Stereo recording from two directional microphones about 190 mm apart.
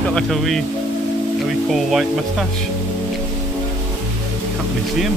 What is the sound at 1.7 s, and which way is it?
Speech, centre (ahead or behind).